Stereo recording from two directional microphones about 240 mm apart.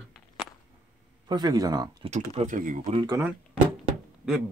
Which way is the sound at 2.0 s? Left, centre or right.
Right.